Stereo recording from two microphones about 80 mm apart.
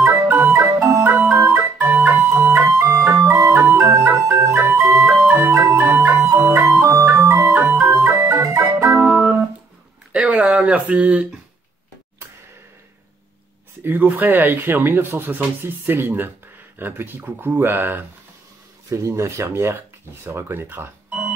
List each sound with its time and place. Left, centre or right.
0.0 s organ: right
0.5 s organ: right
2.0 s music: right
2.5 s organ: right
5.3 s music: right
6.4 s organ: right
9.1 s organ: centre
10.1 s a sound: centre
13.8 s speech: right